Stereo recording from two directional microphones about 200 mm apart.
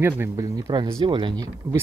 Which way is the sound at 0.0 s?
15° right (ahead or behind).